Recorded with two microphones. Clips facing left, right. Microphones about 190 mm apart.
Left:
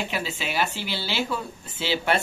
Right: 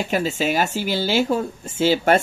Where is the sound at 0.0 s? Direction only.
45° right (ahead or behind).